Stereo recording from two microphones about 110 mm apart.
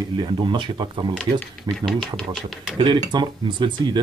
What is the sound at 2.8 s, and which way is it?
Speech, 45° right (ahead or behind).